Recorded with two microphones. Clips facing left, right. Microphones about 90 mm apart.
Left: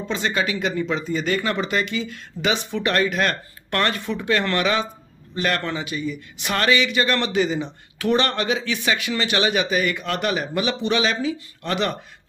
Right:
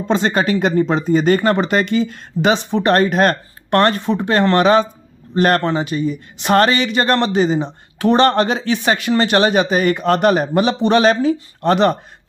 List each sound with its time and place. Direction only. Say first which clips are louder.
0.1 s speech: right 8 dB; 45° right (ahead or behind)